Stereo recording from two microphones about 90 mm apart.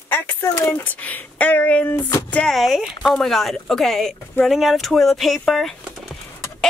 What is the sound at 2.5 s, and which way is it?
Speech, centre (ahead or behind).